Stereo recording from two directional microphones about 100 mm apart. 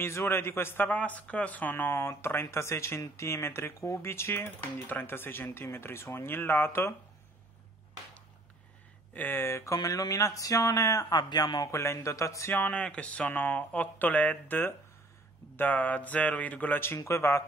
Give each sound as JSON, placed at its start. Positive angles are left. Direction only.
{"t": 0.0, "sound": "speech", "side_deg": 25}
{"t": 9.1, "sound": "speech", "side_deg": 20}
{"t": 11.7, "sound": "speech", "side_deg": 30}